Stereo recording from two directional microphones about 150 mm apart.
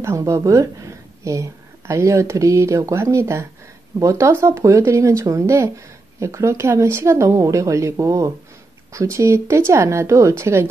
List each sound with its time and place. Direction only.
0.0 s a woman's voice: 20° right (ahead or behind)